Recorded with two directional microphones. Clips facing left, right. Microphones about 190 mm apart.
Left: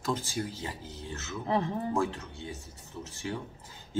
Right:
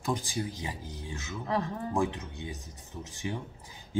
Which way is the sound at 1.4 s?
25° left (ahead or behind).